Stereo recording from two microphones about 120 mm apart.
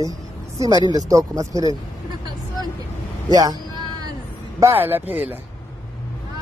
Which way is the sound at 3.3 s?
30° right (ahead or behind).